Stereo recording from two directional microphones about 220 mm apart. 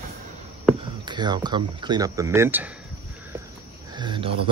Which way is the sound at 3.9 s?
20° right (ahead or behind).